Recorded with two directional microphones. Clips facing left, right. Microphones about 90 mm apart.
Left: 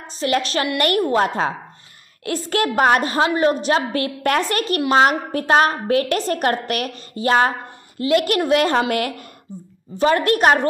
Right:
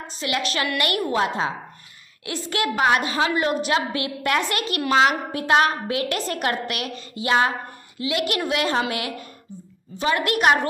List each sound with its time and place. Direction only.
0.1 s a woman's voice: 35° left (ahead or behind)